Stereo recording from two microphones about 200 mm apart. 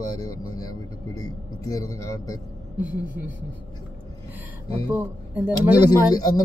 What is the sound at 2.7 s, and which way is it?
Speech, 10° right (ahead or behind).